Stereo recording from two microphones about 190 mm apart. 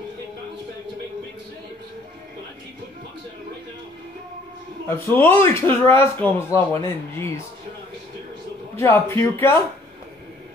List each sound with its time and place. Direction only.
4.8 s speech: 10° left (ahead or behind)
8.7 s speech: 15° left (ahead or behind)